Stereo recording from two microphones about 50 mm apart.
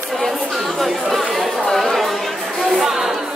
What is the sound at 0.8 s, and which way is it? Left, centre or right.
Speech, centre.